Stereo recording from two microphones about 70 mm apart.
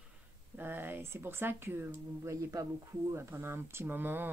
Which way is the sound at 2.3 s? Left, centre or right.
Right.